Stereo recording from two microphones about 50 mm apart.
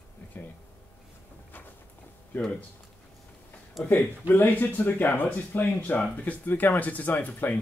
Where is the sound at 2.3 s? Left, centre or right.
Left.